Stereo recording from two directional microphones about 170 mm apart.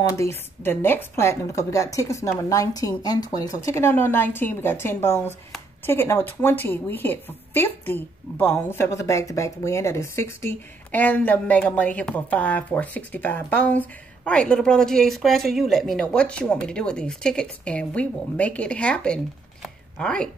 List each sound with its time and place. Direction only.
0.2 s a woman's voice: 15° left (ahead or behind)